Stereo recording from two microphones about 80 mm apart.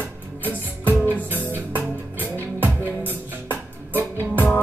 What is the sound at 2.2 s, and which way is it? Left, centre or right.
Music, right.